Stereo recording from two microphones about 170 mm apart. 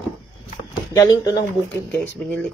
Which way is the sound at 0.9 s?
20° left (ahead or behind).